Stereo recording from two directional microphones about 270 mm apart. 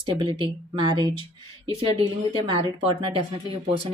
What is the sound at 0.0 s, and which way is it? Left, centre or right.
Speech, centre.